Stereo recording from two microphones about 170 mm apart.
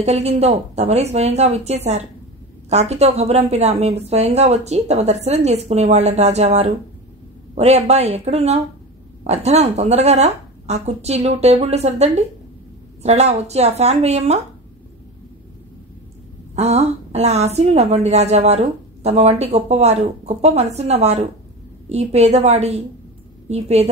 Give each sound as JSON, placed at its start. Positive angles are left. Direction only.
{"t": 0.0, "sound": "a woman's voice", "side_deg": -40}
{"t": 16.5, "sound": "a woman's voice", "side_deg": -40}